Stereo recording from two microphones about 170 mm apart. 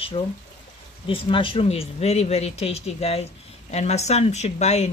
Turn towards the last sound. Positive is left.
turn(degrees=40)  # may be behind; listen again after turning